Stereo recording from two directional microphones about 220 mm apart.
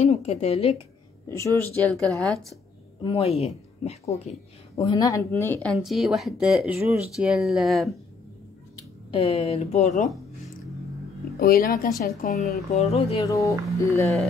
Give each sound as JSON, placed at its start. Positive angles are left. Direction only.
{"t": 0.0, "sound": "speech", "side_deg": 30}
{"t": 1.3, "sound": "speech", "side_deg": 15}
{"t": 3.0, "sound": "speech", "side_deg": 25}
{"t": 9.1, "sound": "speech", "side_deg": 25}
{"t": 11.3, "sound": "a woman's voice", "side_deg": 40}
{"t": 12.3, "sound": "speech", "side_deg": 0}
{"t": 12.7, "sound": "speech", "side_deg": 30}
{"t": 13.2, "sound": "speech", "side_deg": 15}